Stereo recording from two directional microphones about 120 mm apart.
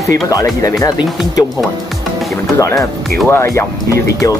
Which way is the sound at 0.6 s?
30° left (ahead or behind).